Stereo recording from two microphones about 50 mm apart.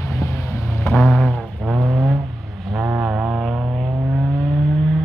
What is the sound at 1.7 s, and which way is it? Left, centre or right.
Vehicle, right.